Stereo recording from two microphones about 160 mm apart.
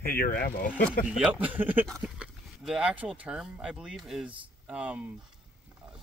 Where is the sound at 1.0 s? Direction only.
10° right (ahead or behind).